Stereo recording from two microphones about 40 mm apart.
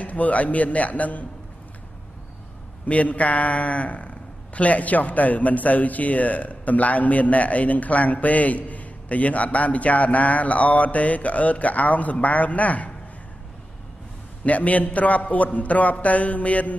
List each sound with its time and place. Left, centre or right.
0.0 s a man's voice: left
2.9 s a man's voice: left
14.4 s a man's voice: left